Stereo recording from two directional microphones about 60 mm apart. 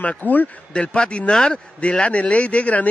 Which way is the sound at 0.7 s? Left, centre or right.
Centre.